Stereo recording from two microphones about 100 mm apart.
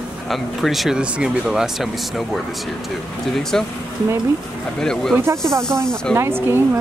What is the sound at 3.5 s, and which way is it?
Speech, 5° left (ahead or behind).